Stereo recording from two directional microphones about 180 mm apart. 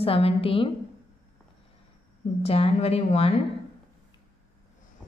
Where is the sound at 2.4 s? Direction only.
35° left (ahead or behind).